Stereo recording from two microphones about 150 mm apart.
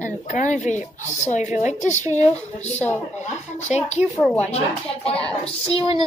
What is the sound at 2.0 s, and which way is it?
Speech, 20° right (ahead or behind).